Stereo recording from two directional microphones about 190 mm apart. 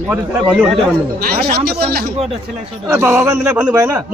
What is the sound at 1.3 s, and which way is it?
Speech, 55° right (ahead or behind).